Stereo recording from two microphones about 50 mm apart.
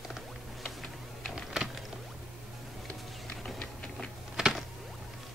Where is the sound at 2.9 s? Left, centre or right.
Centre.